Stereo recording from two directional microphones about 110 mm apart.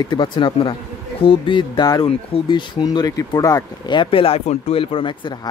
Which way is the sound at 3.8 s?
50° left (ahead or behind).